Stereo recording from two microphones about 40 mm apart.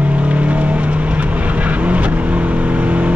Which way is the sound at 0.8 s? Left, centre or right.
Right.